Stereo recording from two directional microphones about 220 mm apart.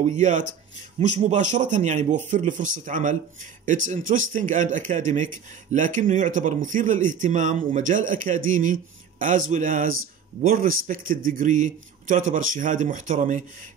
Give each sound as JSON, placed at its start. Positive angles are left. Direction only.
{"t": 0.0, "sound": "speech", "side_deg": -35}